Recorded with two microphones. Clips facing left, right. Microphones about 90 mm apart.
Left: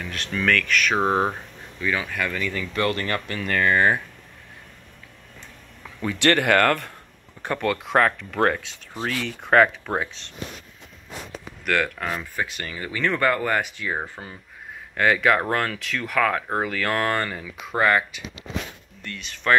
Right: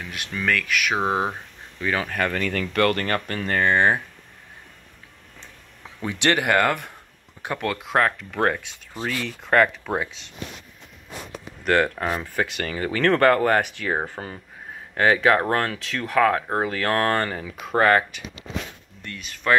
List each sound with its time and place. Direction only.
0.0 s speech: 15° right (ahead or behind)
1.8 s speech: 40° right (ahead or behind)
3.4 s speech: 30° right (ahead or behind)
5.9 s speech: 20° right (ahead or behind)
6.4 s speech: 5° right (ahead or behind)
7.6 s speech: 20° right (ahead or behind)
8.9 s speech: 5° left (ahead or behind)
11.6 s speech: 30° right (ahead or behind)
12.4 s speech: 65° right (ahead or behind)
12.7 s speech: 45° right (ahead or behind)
14.0 s speech: 45° right (ahead or behind)
15.0 s speech: 30° right (ahead or behind); by 18.2 s 45° right (ahead or behind)
19.0 s speech: 10° right (ahead or behind)